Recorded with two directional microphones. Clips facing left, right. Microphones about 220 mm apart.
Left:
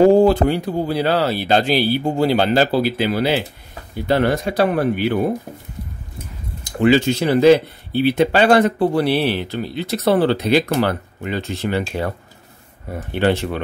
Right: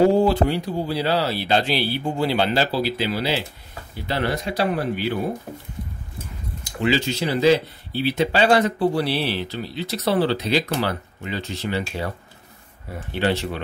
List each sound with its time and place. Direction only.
0.1 s speech: 45° left (ahead or behind)
6.8 s speech: 55° left (ahead or behind)
13.1 s speech: 55° left (ahead or behind)